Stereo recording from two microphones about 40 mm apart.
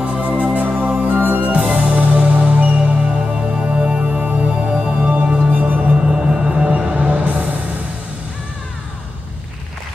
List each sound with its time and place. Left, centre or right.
0.0 s music: right
0.8 s music: right
1.1 s music: right
5.2 s music: right
5.5 s music: right
5.9 s music: right